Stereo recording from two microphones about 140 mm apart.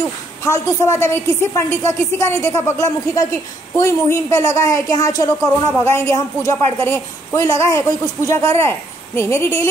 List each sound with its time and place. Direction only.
0.5 s speech: 20° left (ahead or behind)